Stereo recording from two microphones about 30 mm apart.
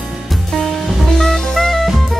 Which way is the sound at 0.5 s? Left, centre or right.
Centre.